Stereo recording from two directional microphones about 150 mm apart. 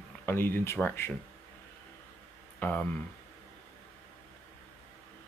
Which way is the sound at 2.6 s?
10° left (ahead or behind).